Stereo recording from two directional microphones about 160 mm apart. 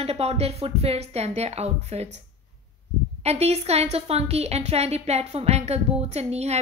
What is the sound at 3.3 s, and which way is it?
A woman's voice, 40° right (ahead or behind).